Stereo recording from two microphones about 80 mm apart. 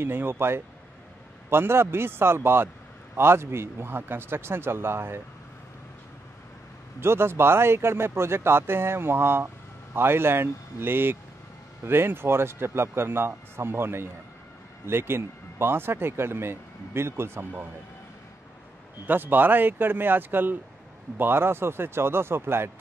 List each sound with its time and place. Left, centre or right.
0.0 s speech: right
7.0 s speech: right
19.0 s speech: right